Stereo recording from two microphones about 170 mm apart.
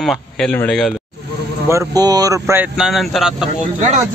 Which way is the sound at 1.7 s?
20° right (ahead or behind).